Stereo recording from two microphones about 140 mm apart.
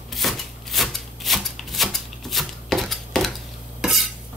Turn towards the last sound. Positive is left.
turn(degrees=0)  # may be behind; listen again after turning